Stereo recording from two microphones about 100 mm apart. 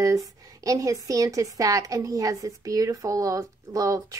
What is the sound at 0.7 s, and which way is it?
A woman's voice, 35° right (ahead or behind).